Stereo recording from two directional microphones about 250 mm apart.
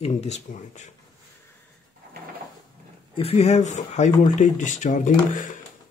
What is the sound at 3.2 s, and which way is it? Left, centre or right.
Speech, left.